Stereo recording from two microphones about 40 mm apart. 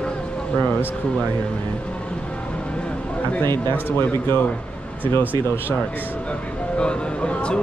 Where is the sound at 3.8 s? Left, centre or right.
Left.